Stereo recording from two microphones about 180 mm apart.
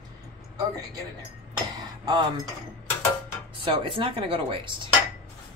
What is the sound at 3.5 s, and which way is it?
Dishes, 30° right (ahead or behind).